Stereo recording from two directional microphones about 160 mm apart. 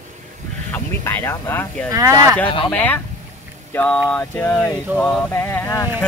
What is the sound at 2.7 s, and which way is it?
Speech, 10° left (ahead or behind).